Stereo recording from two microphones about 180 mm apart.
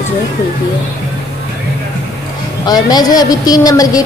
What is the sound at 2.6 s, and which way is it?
A woman's voice, 20° left (ahead or behind).